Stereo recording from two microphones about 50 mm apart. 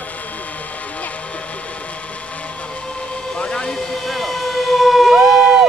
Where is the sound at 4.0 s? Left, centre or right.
Centre.